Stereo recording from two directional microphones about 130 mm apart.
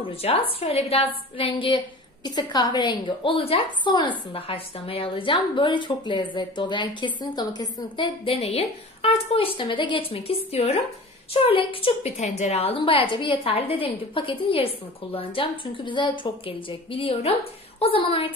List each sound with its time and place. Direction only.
0.0 s a woman's voice: 45° left (ahead or behind)
2.2 s a woman's voice: 30° left (ahead or behind)
8.4 s a woman's voice: 55° left (ahead or behind)